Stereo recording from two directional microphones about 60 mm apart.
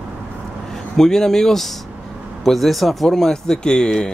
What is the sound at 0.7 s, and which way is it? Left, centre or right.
Speech, centre.